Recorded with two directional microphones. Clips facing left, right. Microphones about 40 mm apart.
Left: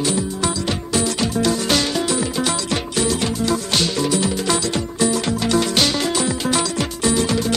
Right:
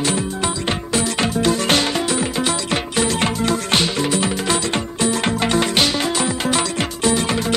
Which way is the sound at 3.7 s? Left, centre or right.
Right.